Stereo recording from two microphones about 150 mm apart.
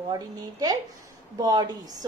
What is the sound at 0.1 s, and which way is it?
A woman's voice, 25° right (ahead or behind).